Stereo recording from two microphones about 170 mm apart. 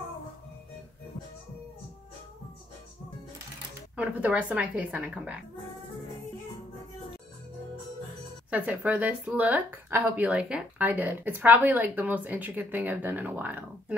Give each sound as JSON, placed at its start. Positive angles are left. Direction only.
{"t": 3.9, "sound": "speech", "side_deg": -10}
{"t": 8.5, "sound": "speech", "side_deg": -10}